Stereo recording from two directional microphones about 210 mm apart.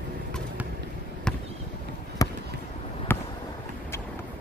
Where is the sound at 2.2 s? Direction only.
15° left (ahead or behind).